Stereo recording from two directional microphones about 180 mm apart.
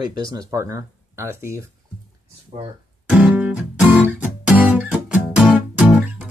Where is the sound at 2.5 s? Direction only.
35° right (ahead or behind).